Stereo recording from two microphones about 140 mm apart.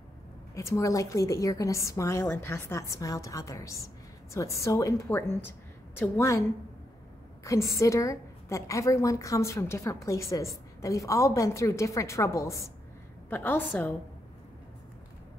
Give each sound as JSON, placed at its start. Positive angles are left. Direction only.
{"t": 0.6, "sound": "a woman's voice", "side_deg": 20}
{"t": 7.7, "sound": "a woman's voice", "side_deg": 20}